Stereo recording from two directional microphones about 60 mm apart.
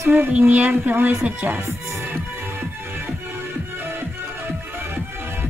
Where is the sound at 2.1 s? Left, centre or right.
Right.